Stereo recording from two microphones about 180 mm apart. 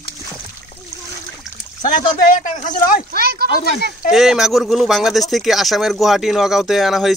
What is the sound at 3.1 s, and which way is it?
Speech, 60° right (ahead or behind).